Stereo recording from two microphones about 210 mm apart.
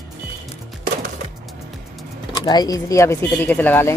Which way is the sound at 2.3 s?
20° left (ahead or behind).